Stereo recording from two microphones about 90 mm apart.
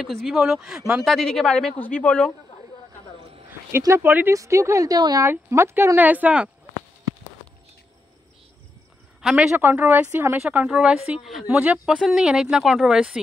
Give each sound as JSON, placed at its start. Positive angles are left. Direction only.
{"t": 0.0, "sound": "speech", "side_deg": 0}
{"t": 1.8, "sound": "speech", "side_deg": 15}
{"t": 4.0, "sound": "speech", "side_deg": -20}
{"t": 4.3, "sound": "a woman's voice", "side_deg": -35}
{"t": 5.2, "sound": "a woman's voice", "side_deg": -30}
{"t": 5.9, "sound": "speech", "side_deg": -20}
{"t": 9.2, "sound": "speech", "side_deg": -5}
{"t": 9.6, "sound": "speech", "side_deg": -20}
{"t": 10.4, "sound": "speech", "side_deg": -10}
{"t": 11.5, "sound": "speech", "side_deg": -15}